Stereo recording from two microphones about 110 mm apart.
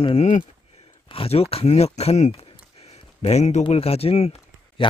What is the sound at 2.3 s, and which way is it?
Speech, 65° left (ahead or behind).